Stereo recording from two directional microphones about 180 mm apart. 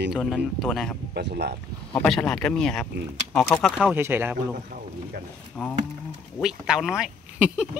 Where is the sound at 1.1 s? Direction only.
65° right (ahead or behind).